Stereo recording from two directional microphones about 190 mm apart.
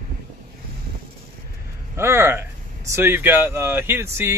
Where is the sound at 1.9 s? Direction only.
15° right (ahead or behind).